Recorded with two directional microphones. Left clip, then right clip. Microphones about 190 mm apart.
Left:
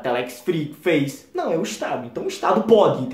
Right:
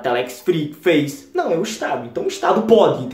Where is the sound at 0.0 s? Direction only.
10° right (ahead or behind).